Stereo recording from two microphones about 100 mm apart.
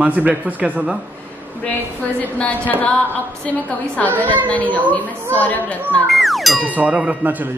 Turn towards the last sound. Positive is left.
turn(degrees=-15)  # may be behind; listen again after turning